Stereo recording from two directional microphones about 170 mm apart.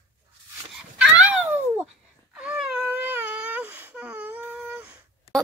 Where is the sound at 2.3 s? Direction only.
5° right (ahead or behind).